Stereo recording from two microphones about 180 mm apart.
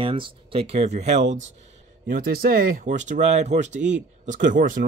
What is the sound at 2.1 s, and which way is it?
Speech, 55° right (ahead or behind).